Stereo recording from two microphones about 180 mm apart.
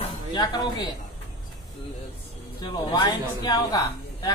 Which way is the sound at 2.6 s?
25° left (ahead or behind).